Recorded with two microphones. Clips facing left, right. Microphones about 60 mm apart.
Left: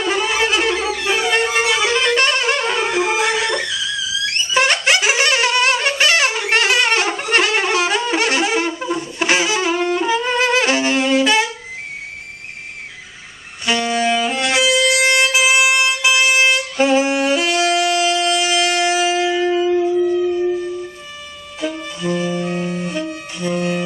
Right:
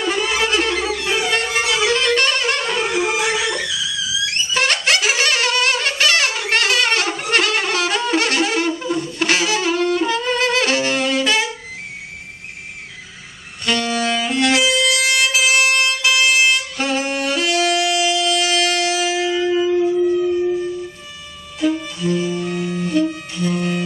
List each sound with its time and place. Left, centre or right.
0.0 s violin: centre
1.3 s music: centre
2.9 s music: centre
4.6 s music: centre
13.7 s saxophone: centre
14.9 s music: left
18.3 s wind instrument: centre
19.1 s shofar: centre
19.6 s music: centre
21.9 s music: centre